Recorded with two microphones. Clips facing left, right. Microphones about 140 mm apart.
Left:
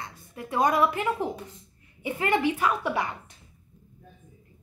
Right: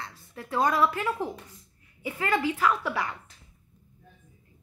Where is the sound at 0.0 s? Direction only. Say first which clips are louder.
Left 2 dB; 15° left (ahead or behind).